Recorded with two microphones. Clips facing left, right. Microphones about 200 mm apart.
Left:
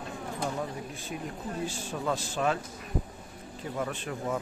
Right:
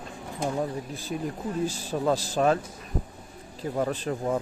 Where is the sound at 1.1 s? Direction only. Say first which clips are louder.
Right 6 dB; 35° right (ahead or behind).